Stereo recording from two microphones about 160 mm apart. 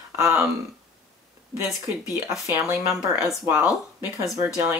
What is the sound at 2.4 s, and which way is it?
Speech, 20° right (ahead or behind).